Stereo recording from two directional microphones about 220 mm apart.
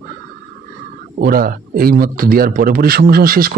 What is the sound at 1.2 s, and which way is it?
A man's voice, 40° right (ahead or behind).